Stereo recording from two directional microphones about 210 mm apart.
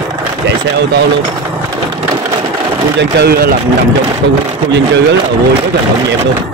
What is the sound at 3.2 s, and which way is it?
Speech, 45° right (ahead or behind).